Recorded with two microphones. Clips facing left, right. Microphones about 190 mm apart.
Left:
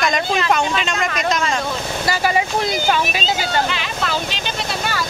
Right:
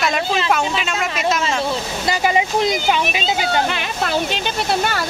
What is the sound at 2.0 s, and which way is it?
Speech, 20° right (ahead or behind).